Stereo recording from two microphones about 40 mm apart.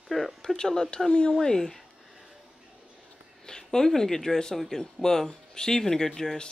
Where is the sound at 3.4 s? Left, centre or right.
Centre.